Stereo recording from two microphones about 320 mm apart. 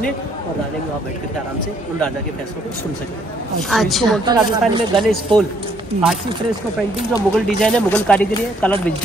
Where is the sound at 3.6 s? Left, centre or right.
Centre.